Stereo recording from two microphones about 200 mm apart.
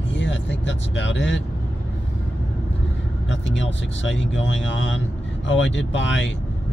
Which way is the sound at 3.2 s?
65° left (ahead or behind).